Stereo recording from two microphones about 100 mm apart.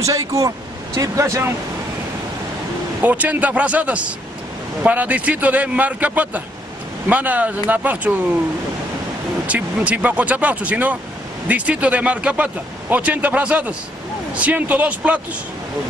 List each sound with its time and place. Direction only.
0.0 s speech: 35° right (ahead or behind)
3.0 s a man's voice: 15° right (ahead or behind)
9.5 s a man's voice: 15° right (ahead or behind)